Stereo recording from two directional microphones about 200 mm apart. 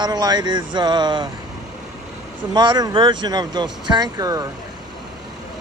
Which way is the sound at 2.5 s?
20° right (ahead or behind).